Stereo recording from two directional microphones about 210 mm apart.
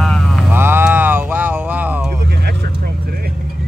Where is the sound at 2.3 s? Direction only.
50° right (ahead or behind).